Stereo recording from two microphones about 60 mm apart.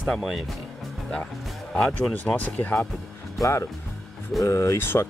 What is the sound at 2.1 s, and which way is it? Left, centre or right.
Speech, left.